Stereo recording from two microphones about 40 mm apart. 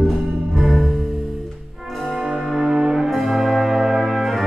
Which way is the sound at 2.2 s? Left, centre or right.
Centre.